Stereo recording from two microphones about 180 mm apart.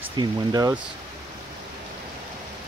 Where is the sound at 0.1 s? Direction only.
25° right (ahead or behind).